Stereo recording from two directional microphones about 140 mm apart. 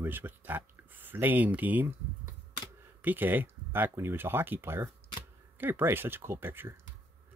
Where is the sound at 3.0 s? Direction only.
15° right (ahead or behind).